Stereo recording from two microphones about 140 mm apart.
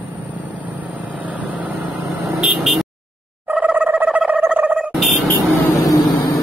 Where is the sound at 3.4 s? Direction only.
10° right (ahead or behind).